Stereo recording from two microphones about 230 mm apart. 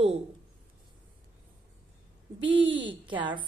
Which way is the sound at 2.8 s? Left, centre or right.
Right.